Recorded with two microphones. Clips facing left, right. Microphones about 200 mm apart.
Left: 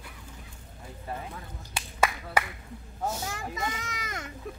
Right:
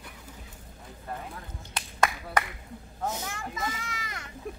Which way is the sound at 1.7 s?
5° left (ahead or behind).